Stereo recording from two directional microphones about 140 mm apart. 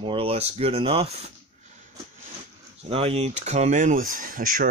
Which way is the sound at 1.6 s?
60° right (ahead or behind).